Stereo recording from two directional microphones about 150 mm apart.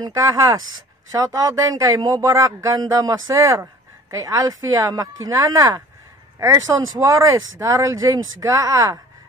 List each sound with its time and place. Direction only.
0.0 s speech: 20° right (ahead or behind)